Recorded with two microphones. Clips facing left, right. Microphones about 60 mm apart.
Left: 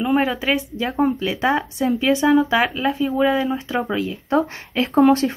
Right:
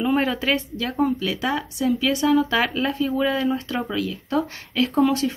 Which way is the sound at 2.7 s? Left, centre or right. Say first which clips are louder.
Left 2 dB; centre.